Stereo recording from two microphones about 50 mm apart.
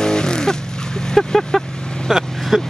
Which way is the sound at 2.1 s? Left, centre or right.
Centre.